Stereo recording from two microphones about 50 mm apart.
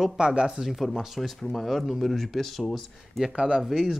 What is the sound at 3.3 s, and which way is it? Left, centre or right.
Speech, centre.